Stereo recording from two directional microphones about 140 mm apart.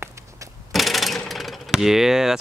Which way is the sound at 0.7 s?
Centre (ahead or behind).